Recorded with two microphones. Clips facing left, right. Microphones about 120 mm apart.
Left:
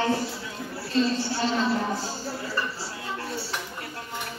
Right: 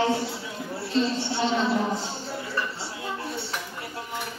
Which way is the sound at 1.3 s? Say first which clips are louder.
Right 1 dB; 25° right (ahead or behind).